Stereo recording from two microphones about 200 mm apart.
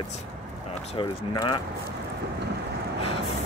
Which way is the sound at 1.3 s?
20° left (ahead or behind).